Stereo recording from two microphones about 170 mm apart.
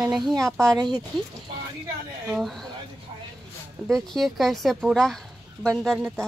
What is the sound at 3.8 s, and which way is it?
A woman's voice, centre (ahead or behind).